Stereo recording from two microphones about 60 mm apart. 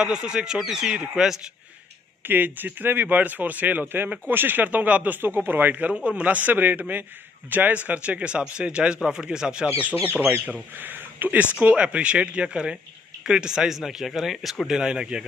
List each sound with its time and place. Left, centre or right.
0.0 s speech: centre
2.2 s a man's voice: right
5.9 s a man's voice: centre